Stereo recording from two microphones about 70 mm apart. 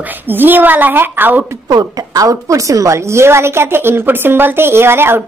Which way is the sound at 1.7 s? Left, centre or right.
Right.